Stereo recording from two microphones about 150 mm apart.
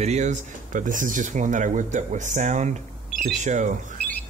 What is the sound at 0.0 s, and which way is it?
Speech, 50° right (ahead or behind).